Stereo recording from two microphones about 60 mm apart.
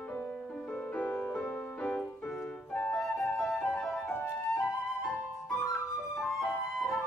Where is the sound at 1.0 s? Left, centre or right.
Left.